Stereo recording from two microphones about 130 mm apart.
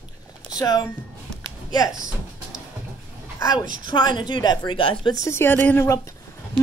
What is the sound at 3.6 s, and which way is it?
Speech, 90° right.